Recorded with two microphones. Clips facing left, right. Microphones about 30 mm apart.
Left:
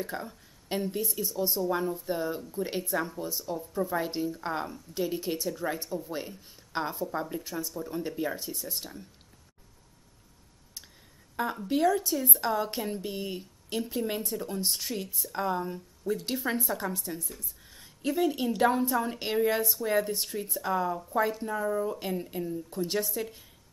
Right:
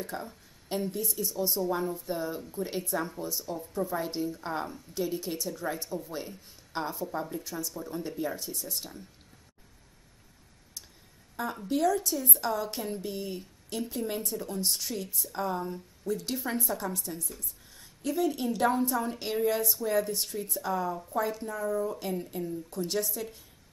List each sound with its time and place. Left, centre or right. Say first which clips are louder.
0.0 s speech: left 2 dB; centre
11.4 s a woman's voice: left 2 dB; left; by 20.7 s centre
20.7 s speech: left 3 dB; left
22.0 s speech: left 1 dB; centre